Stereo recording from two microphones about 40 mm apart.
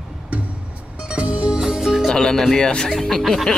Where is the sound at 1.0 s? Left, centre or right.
Right.